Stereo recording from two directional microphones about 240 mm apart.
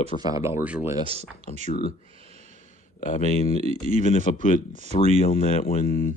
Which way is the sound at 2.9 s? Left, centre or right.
Left.